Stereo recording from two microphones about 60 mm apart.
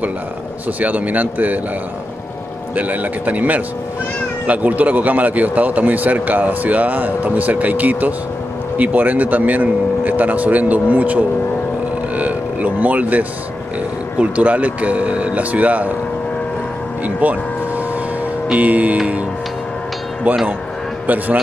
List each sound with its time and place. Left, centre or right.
0.7 s a man's voice: right
2.7 s a man's voice: right
12.2 s vehicle: right
14.1 s a man's voice: right
17.0 s speech: right
18.5 s a man's voice: right
20.3 s a man's voice: right